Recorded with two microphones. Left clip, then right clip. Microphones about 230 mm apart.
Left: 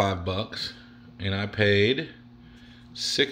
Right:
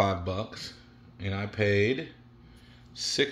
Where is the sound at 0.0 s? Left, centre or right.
Centre.